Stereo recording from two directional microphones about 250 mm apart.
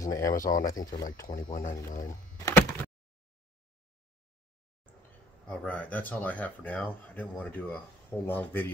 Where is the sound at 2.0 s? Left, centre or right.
Centre.